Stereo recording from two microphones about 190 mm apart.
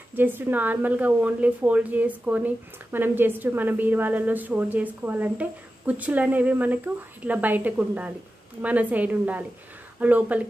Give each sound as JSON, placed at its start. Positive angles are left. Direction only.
{"t": 0.1, "sound": "a woman's voice", "side_deg": -10}